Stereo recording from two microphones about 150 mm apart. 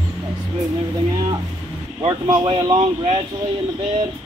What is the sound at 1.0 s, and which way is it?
Speech, 25° right (ahead or behind).